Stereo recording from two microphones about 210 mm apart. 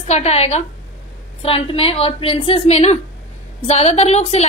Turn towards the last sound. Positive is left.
turn(degrees=30)  # may be behind; listen again after turning